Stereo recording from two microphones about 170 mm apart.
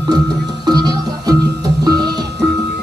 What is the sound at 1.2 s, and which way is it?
Music, 25° right (ahead or behind).